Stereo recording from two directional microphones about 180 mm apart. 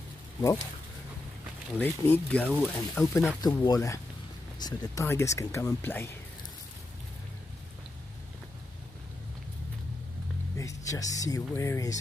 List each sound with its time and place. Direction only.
1.8 s speech: 10° left (ahead or behind)
2.4 s speech: centre (ahead or behind)
3.3 s speech: 20° left (ahead or behind)
10.6 s speech: 20° left (ahead or behind)